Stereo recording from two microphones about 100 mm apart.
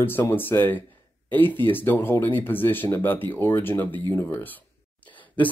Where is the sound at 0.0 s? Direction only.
20° left (ahead or behind).